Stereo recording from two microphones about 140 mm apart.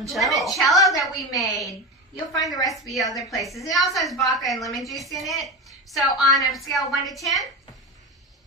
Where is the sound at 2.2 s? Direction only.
25° left (ahead or behind).